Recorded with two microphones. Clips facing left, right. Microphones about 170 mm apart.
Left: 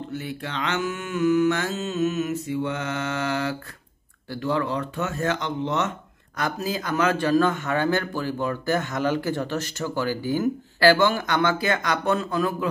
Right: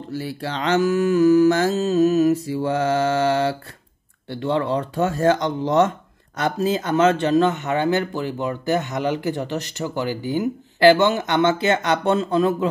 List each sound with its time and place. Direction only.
0.1 s mantra: 35° right (ahead or behind)
5.7 s speech: 35° right (ahead or behind)